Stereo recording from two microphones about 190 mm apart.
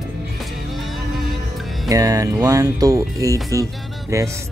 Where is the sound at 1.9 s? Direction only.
20° right (ahead or behind).